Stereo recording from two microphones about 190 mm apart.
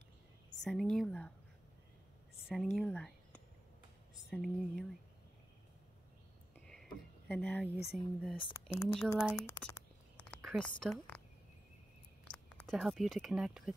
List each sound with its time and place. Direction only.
0.7 s speech: centre (ahead or behind)
2.4 s speech: centre (ahead or behind)
4.3 s speech: centre (ahead or behind)
6.5 s a sound: 5° left (ahead or behind)
7.9 s speech: 5° left (ahead or behind)
8.4 s speech: 25° left (ahead or behind)
8.8 s speech: centre (ahead or behind)
9.3 s speech: 15° left (ahead or behind)
10.4 s speech: 5° left (ahead or behind)
12.3 s speech: 5° left (ahead or behind)